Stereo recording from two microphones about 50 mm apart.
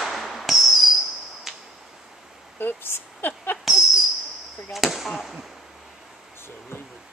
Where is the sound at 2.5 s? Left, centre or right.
Left.